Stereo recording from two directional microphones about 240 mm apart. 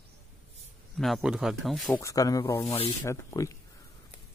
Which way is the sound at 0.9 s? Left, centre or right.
Centre.